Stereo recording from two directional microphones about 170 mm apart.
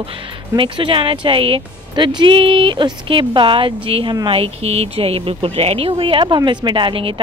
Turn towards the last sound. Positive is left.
turn(degrees=-30)  # may be behind; listen again after turning